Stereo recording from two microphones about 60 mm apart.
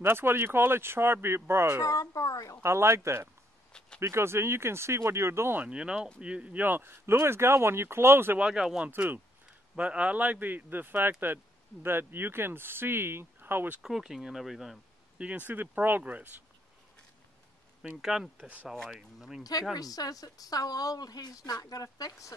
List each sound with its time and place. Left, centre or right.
0.0 s speech: right
1.8 s a woman's voice: left
2.6 s speech: right
5.7 s speech: centre
6.6 s speech: right
8.4 s speech: centre; by 13.7 s right
13.7 s speech: centre
15.1 s speech: right
18.0 s speech: centre
18.4 s speech: right
18.9 s speech: centre
19.7 s speech: left